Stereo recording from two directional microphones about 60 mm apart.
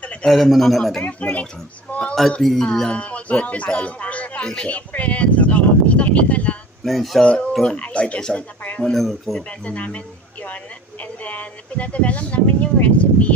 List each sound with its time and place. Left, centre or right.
0.3 s a man's voice: centre
1.0 s speech: left
2.4 s a man's voice: centre
2.9 s speech: left
6.8 s a man's voice: centre
7.6 s speech: centre
8.9 s a man's voice: centre
9.5 s speech: left